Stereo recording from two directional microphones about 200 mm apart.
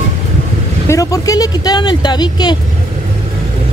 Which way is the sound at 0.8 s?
15° left (ahead or behind).